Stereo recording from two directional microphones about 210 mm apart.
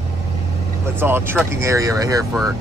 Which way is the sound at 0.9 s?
10° right (ahead or behind).